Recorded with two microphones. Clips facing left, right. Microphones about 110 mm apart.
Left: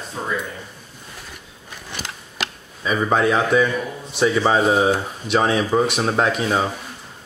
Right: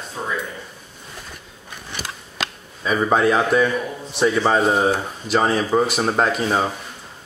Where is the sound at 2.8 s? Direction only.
Centre (ahead or behind).